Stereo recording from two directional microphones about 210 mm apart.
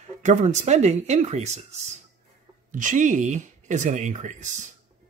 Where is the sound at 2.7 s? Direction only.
40° right (ahead or behind).